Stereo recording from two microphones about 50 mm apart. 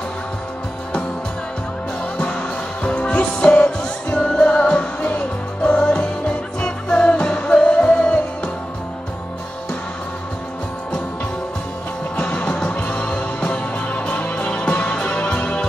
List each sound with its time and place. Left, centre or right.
2.8 s music: left
12.2 s music: left